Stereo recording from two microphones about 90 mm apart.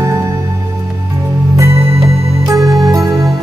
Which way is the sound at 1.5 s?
30° right (ahead or behind).